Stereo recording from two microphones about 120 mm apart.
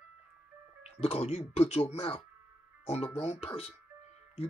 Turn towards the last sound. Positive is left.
turn(degrees=65)  # may be behind; listen again after turning